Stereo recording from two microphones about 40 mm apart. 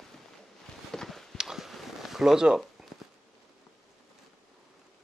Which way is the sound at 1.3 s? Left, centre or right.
Centre.